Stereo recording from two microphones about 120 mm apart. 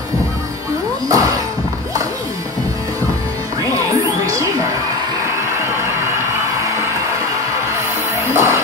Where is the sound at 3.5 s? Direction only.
30° right (ahead or behind).